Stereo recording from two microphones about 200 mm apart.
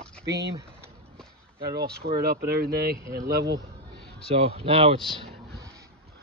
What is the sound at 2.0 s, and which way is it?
Speech, 50° right (ahead or behind).